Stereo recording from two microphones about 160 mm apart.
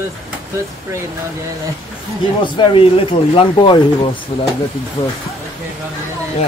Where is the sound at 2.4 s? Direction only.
30° left (ahead or behind).